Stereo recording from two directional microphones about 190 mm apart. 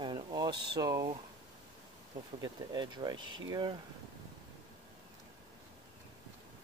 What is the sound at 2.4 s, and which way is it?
Speech, 20° right (ahead or behind).